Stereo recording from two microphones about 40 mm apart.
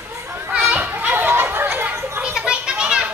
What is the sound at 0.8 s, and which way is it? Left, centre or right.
Children playing, right.